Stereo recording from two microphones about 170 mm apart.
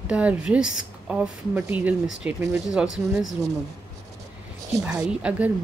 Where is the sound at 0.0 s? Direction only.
10° right (ahead or behind).